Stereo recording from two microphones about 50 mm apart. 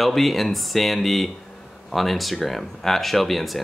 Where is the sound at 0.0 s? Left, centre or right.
Centre.